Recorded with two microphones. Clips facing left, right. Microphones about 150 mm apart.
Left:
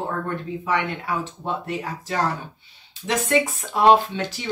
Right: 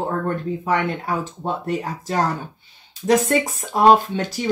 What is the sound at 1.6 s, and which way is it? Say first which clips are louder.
Speech: right 4 dB; 40° right (ahead or behind).